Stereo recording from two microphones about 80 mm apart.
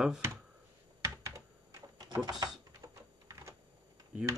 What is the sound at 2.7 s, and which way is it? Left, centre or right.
Typing, right.